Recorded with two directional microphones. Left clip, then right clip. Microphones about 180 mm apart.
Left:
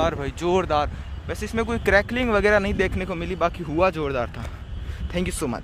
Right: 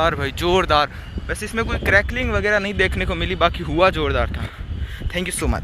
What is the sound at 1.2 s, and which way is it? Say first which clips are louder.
Speech: right 2 dB; 15° left (ahead or behind).